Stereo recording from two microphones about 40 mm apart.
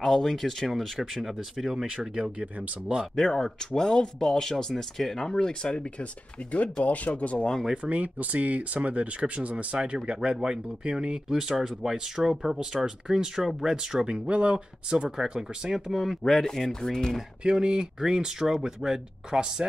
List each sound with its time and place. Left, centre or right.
0.0 s speech: centre
0.5 s speech: centre
3.2 s speech: centre
6.5 s speech: left
7.8 s speech: right
11.2 s speech: centre
15.9 s speech: centre
17.4 s speech: right